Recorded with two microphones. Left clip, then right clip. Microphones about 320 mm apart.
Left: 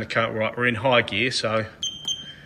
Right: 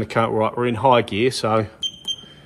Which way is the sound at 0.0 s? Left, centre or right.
Centre.